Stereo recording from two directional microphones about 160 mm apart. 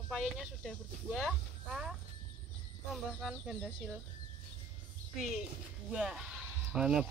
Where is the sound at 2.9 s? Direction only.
Centre (ahead or behind).